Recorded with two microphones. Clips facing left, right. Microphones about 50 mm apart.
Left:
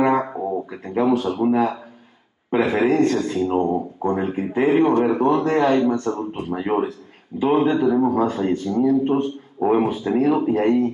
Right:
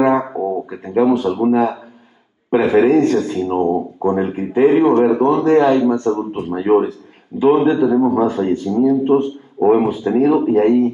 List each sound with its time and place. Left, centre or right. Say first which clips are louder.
0.0 s a sound: right 4 dB; centre
1.2 s speech: right 4 dB; centre
2.6 s a man's voice: right 5 dB; centre